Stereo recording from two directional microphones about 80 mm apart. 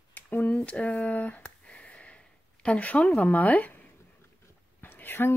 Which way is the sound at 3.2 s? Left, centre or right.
Left.